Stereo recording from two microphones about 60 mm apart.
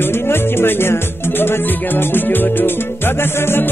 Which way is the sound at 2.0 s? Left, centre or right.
Left.